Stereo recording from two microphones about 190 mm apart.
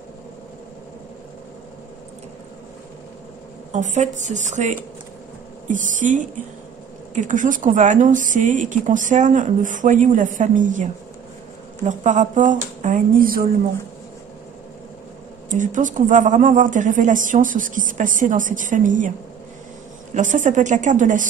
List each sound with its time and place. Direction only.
3.7 s speech: 40° right (ahead or behind)
15.5 s speech: 40° right (ahead or behind)
20.2 s speech: 40° right (ahead or behind)